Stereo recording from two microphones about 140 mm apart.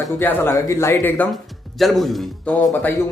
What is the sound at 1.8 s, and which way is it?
Speech, centre (ahead or behind).